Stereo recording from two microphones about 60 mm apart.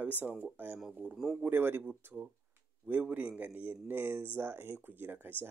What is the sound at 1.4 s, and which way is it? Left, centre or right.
Speech, right.